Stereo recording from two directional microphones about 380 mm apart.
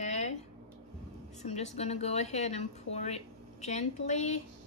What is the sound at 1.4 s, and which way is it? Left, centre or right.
A woman's voice, centre.